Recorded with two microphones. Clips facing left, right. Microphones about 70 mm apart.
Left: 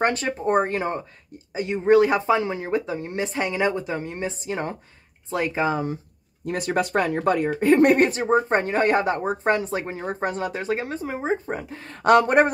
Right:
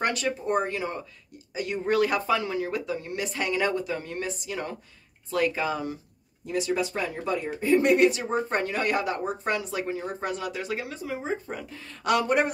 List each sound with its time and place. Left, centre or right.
0.0 s speech: left
1.5 s speech: left
6.4 s speech: left